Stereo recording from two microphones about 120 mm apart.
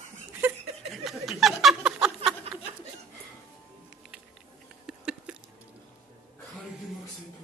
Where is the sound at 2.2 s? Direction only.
60° right (ahead or behind).